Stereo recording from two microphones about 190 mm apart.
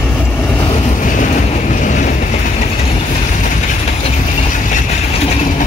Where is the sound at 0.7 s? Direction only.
35° left (ahead or behind).